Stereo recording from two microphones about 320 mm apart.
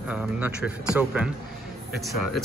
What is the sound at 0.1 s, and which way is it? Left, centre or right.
Speech, centre.